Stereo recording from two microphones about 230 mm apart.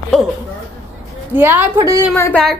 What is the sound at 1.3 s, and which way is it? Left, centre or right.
Speech, centre.